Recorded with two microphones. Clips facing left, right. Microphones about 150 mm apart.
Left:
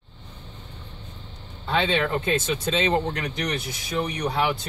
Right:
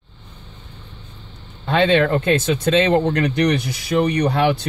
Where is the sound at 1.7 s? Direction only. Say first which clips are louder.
Right 7 dB; 70° right (ahead or behind).